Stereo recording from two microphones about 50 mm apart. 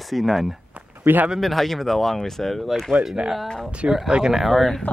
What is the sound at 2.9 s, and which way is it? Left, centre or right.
Speech, centre.